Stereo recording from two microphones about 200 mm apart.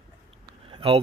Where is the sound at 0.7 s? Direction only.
25° right (ahead or behind).